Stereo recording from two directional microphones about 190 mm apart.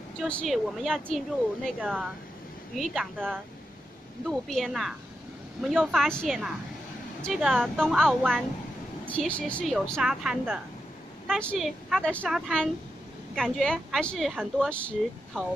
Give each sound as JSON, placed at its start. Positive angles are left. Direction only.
{"t": 0.2, "sound": "a woman's voice", "side_deg": 0}